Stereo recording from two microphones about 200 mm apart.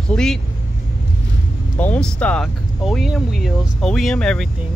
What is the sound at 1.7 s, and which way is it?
Speech, 5° left (ahead or behind).